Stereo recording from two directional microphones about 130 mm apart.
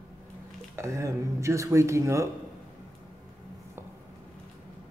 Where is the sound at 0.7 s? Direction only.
25° right (ahead or behind).